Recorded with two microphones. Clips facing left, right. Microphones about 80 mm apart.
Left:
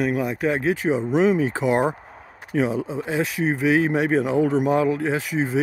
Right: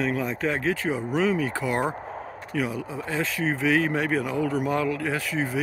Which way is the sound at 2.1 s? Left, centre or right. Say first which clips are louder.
Right 3 dB; right.